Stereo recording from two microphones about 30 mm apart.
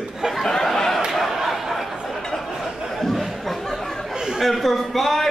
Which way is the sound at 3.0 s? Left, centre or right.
Centre.